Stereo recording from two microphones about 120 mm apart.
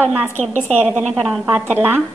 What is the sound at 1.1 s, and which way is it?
Speech, 5° left (ahead or behind).